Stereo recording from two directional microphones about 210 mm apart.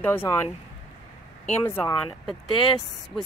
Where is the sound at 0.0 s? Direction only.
10° left (ahead or behind).